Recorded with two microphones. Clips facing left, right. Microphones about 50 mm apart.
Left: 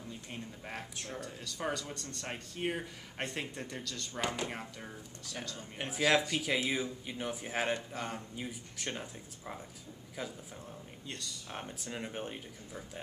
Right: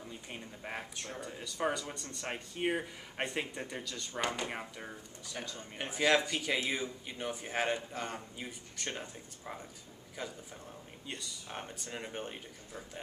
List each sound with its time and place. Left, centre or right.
0.3 s speech: centre
0.9 s speech: centre
1.2 s speech: centre
11.1 s speech: centre